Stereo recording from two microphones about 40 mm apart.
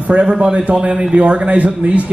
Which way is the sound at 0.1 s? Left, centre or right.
Right.